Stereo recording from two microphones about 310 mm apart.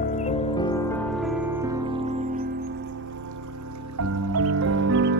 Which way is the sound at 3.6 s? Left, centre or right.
Right.